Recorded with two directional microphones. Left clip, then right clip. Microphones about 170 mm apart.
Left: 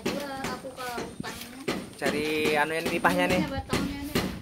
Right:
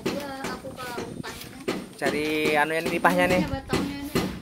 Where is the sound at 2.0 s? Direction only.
15° right (ahead or behind).